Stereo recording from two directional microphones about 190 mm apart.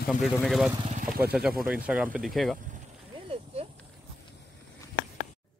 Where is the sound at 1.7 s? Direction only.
5° right (ahead or behind).